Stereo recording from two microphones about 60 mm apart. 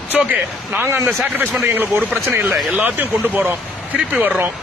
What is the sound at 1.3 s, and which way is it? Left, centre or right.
Speech, right.